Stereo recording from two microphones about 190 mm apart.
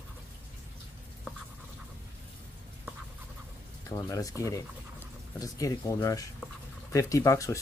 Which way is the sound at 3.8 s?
15° left (ahead or behind).